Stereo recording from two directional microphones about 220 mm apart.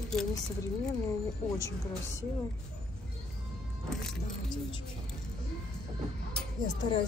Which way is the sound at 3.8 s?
Centre (ahead or behind).